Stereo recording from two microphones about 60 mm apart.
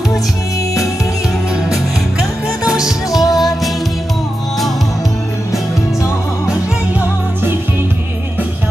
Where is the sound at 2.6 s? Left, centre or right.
Centre.